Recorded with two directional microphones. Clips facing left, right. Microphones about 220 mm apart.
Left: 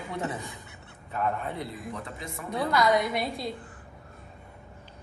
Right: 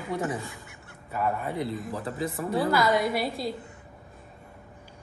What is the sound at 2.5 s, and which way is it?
A woman's voice, 5° right (ahead or behind).